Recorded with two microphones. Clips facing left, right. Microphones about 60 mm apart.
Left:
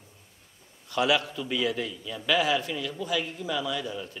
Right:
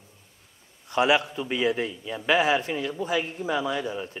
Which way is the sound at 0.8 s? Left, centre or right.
Right.